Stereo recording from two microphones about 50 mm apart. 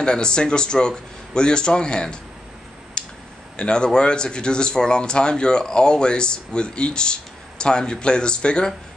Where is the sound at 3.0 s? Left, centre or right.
Centre.